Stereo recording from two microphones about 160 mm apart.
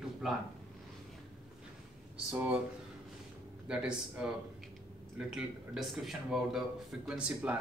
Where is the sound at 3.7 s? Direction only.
5° right (ahead or behind).